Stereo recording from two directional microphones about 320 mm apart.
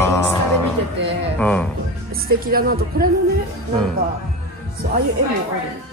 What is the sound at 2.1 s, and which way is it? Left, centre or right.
Speech, right.